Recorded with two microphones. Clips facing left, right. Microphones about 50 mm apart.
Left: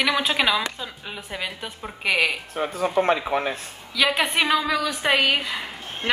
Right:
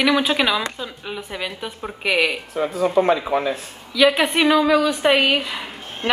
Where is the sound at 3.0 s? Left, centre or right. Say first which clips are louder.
Right 3 dB; left.